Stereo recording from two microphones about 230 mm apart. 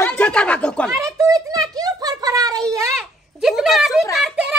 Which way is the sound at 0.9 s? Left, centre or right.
Centre.